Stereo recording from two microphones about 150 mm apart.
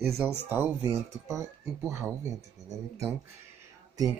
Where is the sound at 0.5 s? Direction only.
15° right (ahead or behind).